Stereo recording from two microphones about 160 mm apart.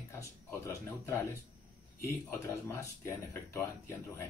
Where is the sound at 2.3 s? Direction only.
15° left (ahead or behind).